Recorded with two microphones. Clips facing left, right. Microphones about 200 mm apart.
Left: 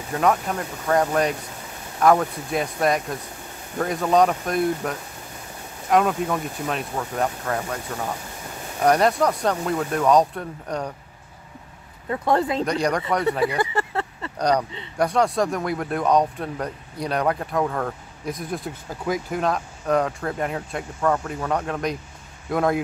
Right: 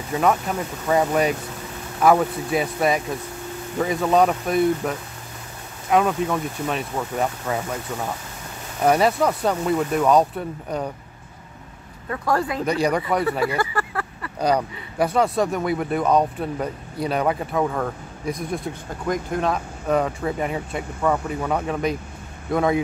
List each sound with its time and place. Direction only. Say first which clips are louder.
0.1 s speech: right 1 dB; centre (ahead or behind)
8.8 s speech: even; 5° right (ahead or behind)
12.1 s speech: left 2 dB; 20° left (ahead or behind)
12.6 s speech: right 2 dB; 5° right (ahead or behind)
13.6 s a sound: left 1 dB; 25° left (ahead or behind)
14.4 s speech: even; 5° right (ahead or behind)